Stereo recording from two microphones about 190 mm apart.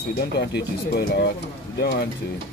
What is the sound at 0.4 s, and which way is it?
Speech, 60° left (ahead or behind).